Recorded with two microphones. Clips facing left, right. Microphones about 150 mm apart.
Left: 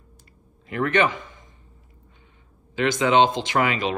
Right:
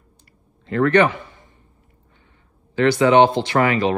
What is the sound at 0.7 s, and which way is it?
Speech, 20° left (ahead or behind).